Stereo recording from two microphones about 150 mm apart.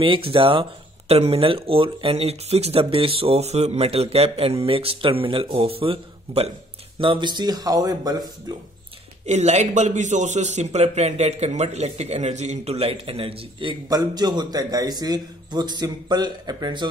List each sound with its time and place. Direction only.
0.0 s speech: 35° right (ahead or behind)
9.2 s a man's voice: 50° right (ahead or behind); by 16.9 s 30° right (ahead or behind)